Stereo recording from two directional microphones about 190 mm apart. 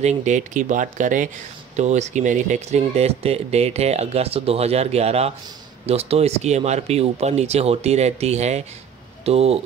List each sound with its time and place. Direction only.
0.0 s speech: 40° right (ahead or behind)